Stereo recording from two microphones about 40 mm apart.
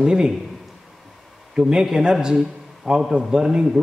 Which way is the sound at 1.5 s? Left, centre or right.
Centre.